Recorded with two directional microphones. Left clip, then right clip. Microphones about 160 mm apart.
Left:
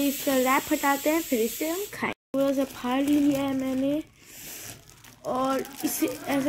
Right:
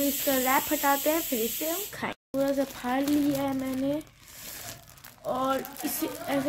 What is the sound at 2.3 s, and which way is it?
Speech, 10° left (ahead or behind).